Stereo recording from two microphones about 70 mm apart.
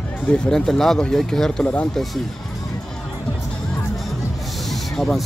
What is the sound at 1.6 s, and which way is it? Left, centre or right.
Speech, centre.